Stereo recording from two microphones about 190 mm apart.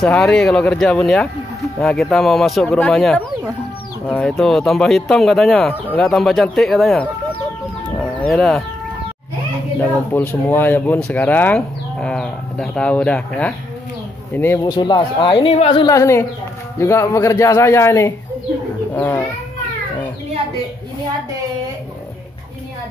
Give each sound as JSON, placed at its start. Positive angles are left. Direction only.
{"t": 0.0, "sound": "speech", "side_deg": 5}
{"t": 8.0, "sound": "sheep", "side_deg": 5}
{"t": 9.8, "sound": "a man's voice", "side_deg": 10}